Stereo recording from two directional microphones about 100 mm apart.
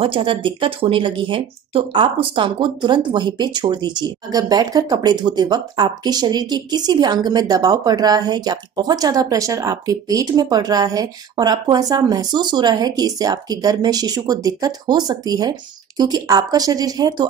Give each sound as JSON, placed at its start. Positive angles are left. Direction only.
{"t": 0.0, "sound": "a woman's voice", "side_deg": -60}